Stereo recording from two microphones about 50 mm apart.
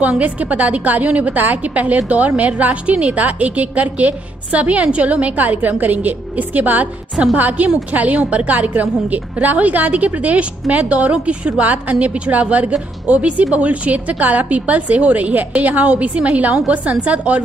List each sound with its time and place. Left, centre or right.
0.2 s a woman's voice: right